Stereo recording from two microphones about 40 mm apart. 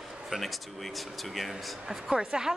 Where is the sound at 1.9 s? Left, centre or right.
Centre.